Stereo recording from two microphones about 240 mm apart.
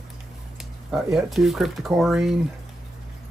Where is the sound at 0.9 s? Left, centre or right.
Centre.